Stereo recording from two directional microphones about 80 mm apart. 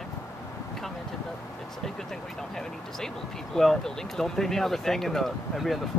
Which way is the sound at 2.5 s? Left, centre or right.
Centre.